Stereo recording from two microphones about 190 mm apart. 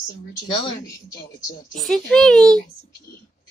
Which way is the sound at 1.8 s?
Centre (ahead or behind).